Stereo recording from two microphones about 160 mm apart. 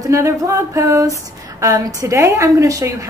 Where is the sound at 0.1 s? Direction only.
20° right (ahead or behind).